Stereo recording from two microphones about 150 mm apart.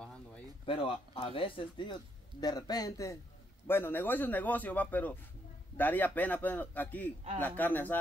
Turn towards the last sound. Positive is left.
turn(degrees=10)  # may be behind; listen again after turning